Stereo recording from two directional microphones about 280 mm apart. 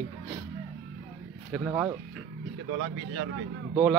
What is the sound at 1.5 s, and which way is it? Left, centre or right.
Speech, centre.